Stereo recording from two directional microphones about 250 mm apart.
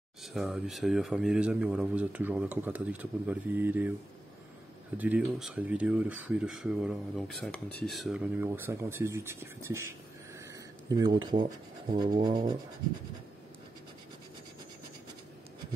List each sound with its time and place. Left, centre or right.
0.2 s speech: centre
4.9 s speech: centre
10.9 s speech: centre